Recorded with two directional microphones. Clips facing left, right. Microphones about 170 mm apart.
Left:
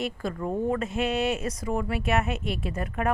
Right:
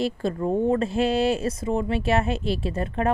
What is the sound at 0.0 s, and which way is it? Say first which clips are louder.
A woman's voice: right 5 dB; 30° right (ahead or behind).